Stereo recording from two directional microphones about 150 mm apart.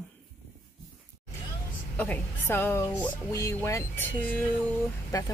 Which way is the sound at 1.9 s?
10° left (ahead or behind).